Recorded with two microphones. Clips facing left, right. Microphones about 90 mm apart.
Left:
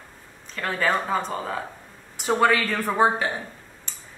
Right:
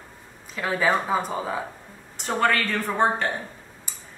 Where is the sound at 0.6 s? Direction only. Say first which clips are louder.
Right 1 dB; 10° right (ahead or behind).